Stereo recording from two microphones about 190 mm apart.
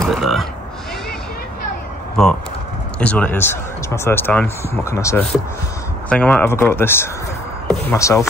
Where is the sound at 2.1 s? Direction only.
5° left (ahead or behind).